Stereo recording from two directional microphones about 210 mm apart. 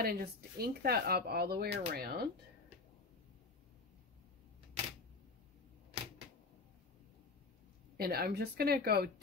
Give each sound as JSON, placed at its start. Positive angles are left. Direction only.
{"t": 0.0, "sound": "speech", "side_deg": -45}
{"t": 8.0, "sound": "speech", "side_deg": -45}